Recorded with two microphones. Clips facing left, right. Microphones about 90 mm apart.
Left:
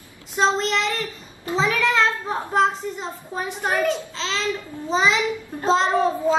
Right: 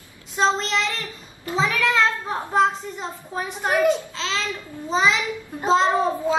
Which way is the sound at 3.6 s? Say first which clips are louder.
Right 3 dB; 5° right (ahead or behind).